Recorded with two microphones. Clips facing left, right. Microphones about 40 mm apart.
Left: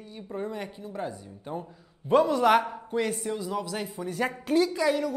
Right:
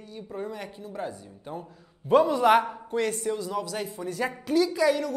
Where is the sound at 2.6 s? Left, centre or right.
Centre.